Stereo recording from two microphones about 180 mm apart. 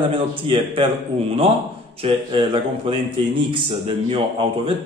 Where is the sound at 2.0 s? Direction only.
30° right (ahead or behind).